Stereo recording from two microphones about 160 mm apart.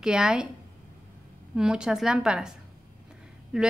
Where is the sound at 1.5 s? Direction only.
5° right (ahead or behind).